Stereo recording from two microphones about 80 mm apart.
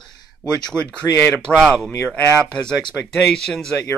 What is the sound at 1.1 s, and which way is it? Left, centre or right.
Speech, left.